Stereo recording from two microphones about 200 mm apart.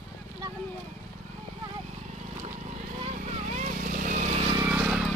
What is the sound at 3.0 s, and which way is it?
Vehicle, 35° right (ahead or behind).